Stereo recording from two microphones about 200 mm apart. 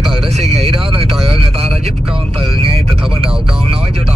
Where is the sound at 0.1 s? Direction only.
30° right (ahead or behind).